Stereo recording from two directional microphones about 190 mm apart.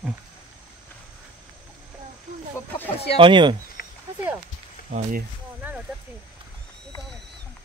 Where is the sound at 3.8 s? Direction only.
55° left (ahead or behind).